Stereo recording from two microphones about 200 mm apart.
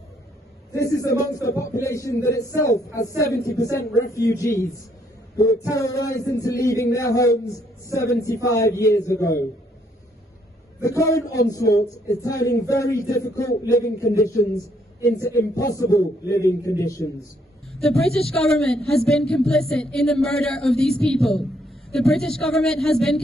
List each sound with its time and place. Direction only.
0.7 s speech: 15° left (ahead or behind)
10.8 s speech: 15° left (ahead or behind)
17.7 s speech: 5° left (ahead or behind)